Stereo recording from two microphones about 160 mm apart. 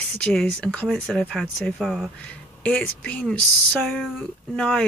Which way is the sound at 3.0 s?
10° left (ahead or behind).